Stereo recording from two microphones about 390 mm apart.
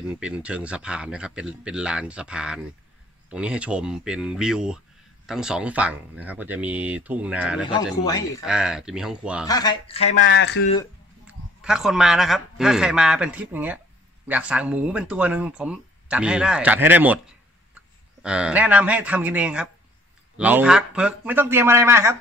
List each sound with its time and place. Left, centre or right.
0.0 s speech: centre
8.0 s speech: centre
8.5 s speech: centre
9.5 s speech: centre; by 10.7 s left
11.2 s speech: centre
18.2 s speech: centre